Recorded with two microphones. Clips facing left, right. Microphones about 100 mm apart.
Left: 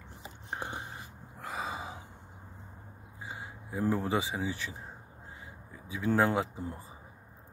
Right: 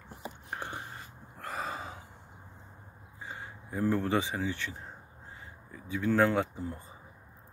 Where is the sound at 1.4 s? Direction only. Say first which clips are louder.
Even; 5° left (ahead or behind).